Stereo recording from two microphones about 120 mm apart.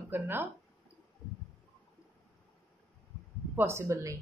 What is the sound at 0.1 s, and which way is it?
Speech, 20° right (ahead or behind).